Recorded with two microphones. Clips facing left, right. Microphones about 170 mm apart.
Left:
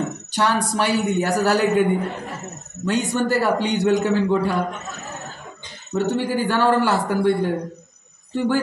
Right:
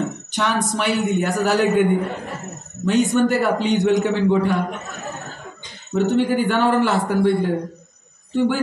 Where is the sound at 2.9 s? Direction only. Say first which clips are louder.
Right 4 dB; 20° right (ahead or behind).